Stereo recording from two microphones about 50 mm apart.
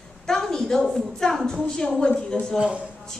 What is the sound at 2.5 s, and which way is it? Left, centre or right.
Speech, right.